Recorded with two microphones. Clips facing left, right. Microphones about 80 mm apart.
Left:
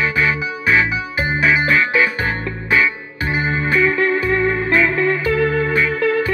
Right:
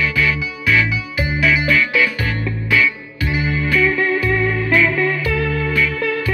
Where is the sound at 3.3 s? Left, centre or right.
Left.